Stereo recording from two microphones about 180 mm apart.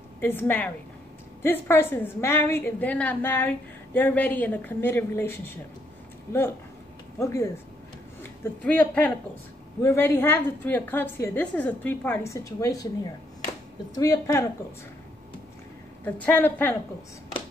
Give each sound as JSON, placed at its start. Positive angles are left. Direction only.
{"t": 0.2, "sound": "a woman's voice", "side_deg": 10}
{"t": 7.2, "sound": "a woman's voice", "side_deg": 15}
{"t": 13.9, "sound": "speech", "side_deg": 20}
{"t": 16.2, "sound": "a woman's voice", "side_deg": 10}